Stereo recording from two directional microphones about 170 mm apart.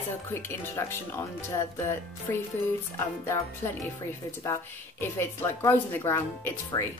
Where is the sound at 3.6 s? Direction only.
15° left (ahead or behind).